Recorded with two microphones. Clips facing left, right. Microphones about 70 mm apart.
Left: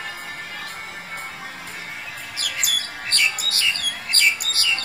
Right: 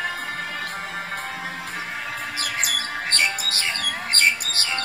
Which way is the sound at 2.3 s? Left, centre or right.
Right.